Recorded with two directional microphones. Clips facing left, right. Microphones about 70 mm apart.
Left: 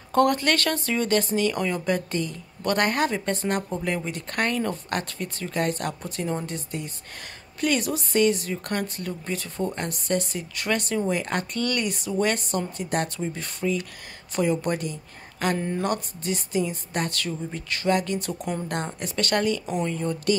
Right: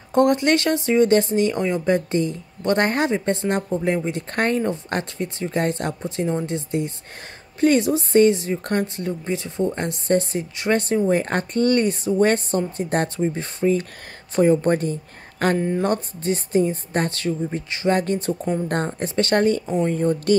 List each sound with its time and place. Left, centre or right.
0.1 s a woman's voice: right